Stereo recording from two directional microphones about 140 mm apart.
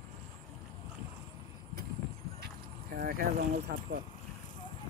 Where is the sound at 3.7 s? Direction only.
80° right.